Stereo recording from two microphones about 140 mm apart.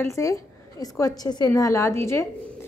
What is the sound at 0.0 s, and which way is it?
A woman's voice, 20° left (ahead or behind).